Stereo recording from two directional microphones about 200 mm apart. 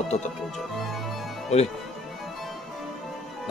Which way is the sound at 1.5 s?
35° left (ahead or behind).